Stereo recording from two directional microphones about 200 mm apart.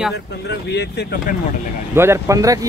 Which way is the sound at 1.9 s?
10° right (ahead or behind).